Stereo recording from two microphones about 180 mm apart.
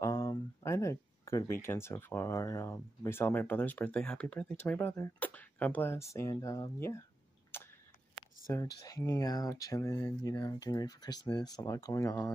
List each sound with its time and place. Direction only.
0.0 s speech: 20° left (ahead or behind)
7.5 s a sound: 10° left (ahead or behind)
8.5 s speech: 15° left (ahead or behind)